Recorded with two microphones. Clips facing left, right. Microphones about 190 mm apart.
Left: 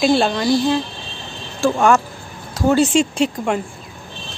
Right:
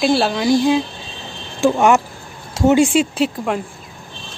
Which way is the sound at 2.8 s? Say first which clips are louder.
Even; 5° right (ahead or behind).